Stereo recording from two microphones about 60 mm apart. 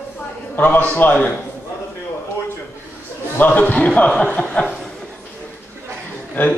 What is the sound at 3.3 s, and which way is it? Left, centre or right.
A man's voice, left.